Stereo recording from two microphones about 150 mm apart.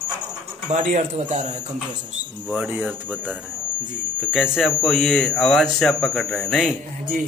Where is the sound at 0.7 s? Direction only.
55° right (ahead or behind).